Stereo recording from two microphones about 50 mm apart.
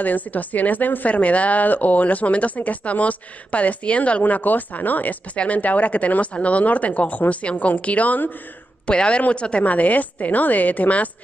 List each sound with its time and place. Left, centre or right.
0.0 s a woman's voice: left
8.8 s a woman's voice: left